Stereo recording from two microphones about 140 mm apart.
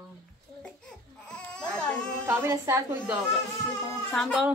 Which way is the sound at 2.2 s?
20° right (ahead or behind).